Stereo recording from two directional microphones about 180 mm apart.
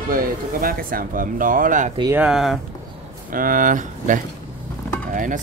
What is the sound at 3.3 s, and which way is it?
Speech, 50° right (ahead or behind).